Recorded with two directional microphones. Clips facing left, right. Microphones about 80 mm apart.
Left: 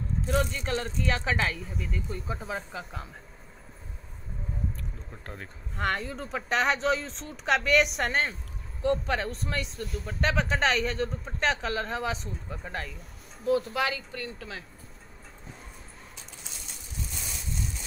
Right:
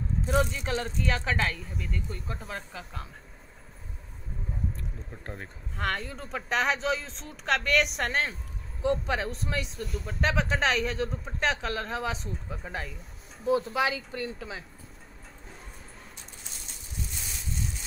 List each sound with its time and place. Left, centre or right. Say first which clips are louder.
0.3 s speech: right 1 dB; centre
5.8 s speech: left 2 dB; centre
13.5 s speech: even; right